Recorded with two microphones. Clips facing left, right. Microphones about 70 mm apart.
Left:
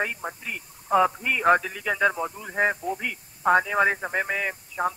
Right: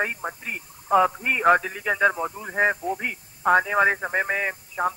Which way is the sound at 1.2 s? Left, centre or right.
Right.